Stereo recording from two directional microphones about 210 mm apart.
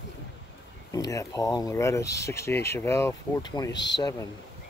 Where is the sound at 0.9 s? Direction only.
15° left (ahead or behind).